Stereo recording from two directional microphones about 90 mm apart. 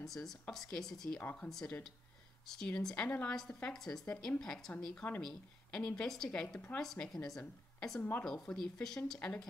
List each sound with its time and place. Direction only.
0.0 s speech: 5° left (ahead or behind)
1.2 s speech: 15° left (ahead or behind)
1.5 s speech: 5° left (ahead or behind)
3.1 s speech: 20° left (ahead or behind)
3.7 s speech: 5° left (ahead or behind)
8.0 s speech: 15° left (ahead or behind)